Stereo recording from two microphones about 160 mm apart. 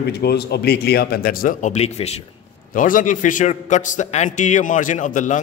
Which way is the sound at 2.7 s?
55° left (ahead or behind).